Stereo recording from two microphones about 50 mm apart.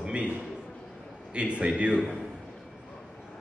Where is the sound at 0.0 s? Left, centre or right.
Right.